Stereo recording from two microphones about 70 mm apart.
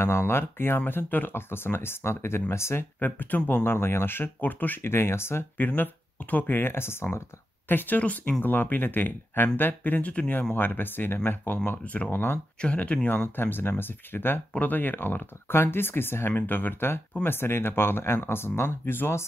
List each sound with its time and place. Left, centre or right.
0.0 s speech: left
5.7 s speech: left
12.5 s speech: centre
13.4 s speech: left